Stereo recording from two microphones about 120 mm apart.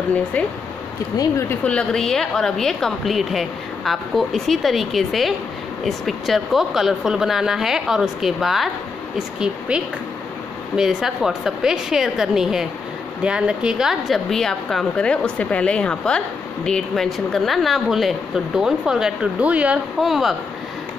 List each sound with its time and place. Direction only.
1.1 s speech: 30° left (ahead or behind)
1.5 s a woman's voice: 10° left (ahead or behind)